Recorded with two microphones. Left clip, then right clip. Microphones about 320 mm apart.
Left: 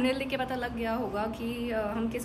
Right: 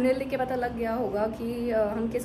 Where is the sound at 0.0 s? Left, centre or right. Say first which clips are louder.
Right 4 dB; centre.